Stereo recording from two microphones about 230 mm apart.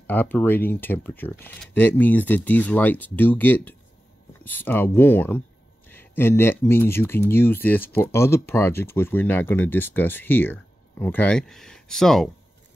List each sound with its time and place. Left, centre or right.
0.0 s speech: centre